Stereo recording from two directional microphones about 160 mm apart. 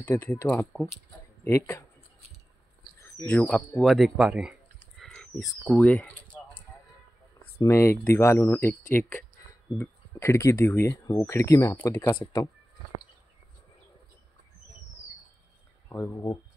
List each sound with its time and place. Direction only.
0.0 s speech: 10° left (ahead or behind)
3.3 s speech: 10° left (ahead or behind)
4.9 s a sound: 5° left (ahead or behind)
5.7 s typing: 10° left (ahead or behind)
7.5 s speech: 15° left (ahead or behind)
9.8 s speech: 15° left (ahead or behind)
12.2 s speech: 30° left (ahead or behind)
15.9 s speech: 20° left (ahead or behind)